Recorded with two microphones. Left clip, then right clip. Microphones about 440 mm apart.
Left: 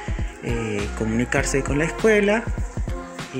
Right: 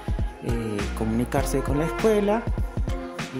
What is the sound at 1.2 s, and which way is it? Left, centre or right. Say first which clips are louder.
Speech: left 4 dB; right.